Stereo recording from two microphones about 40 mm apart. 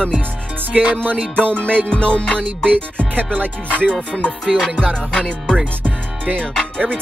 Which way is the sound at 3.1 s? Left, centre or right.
Right.